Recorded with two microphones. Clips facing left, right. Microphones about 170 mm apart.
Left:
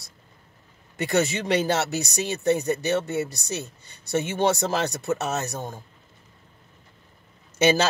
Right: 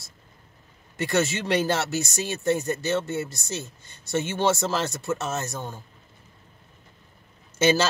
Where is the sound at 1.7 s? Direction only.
65° left (ahead or behind).